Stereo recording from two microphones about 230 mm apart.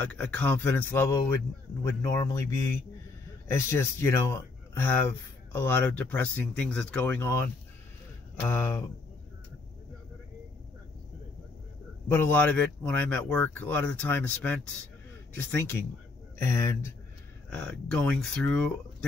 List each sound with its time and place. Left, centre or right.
0.0 s a man's voice: centre
5.5 s a man's voice: centre
8.5 s a man's voice: centre
12.1 s a man's voice: centre